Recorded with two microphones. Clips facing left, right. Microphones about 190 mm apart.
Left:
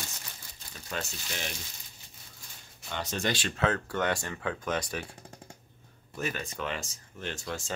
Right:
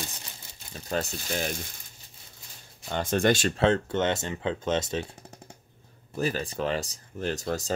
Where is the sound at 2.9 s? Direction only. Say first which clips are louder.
Right 8 dB; 50° right (ahead or behind).